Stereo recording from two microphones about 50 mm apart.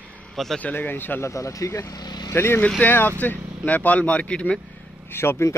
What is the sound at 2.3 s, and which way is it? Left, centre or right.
Speech, left.